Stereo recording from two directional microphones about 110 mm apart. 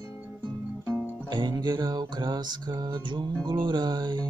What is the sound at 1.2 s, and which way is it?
Music, 40° right (ahead or behind).